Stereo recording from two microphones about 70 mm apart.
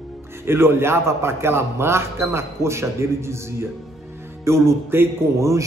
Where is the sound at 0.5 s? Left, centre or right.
Right.